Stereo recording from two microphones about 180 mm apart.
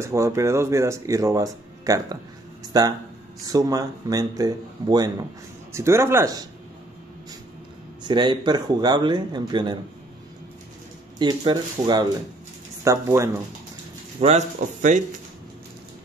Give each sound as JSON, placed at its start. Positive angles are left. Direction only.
{"t": 0.0, "sound": "speech", "side_deg": -15}
{"t": 3.4, "sound": "speech", "side_deg": -20}
{"t": 8.0, "sound": "speech", "side_deg": -25}
{"t": 11.1, "sound": "speech", "side_deg": -25}
{"t": 14.2, "sound": "speech", "side_deg": -40}